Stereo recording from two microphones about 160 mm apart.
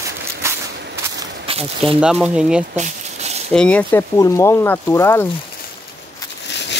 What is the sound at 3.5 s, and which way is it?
Speech, 5° left (ahead or behind).